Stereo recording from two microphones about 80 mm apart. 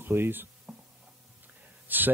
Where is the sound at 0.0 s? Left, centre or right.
Right.